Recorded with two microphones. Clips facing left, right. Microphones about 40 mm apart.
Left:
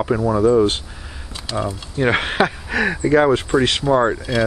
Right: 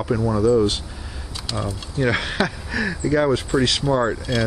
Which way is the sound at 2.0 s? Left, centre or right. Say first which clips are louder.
Left 4 dB; left.